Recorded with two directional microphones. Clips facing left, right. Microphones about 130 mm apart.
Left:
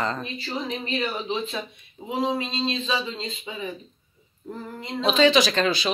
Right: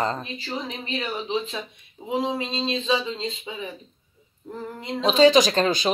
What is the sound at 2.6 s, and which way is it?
Speech, 15° right (ahead or behind).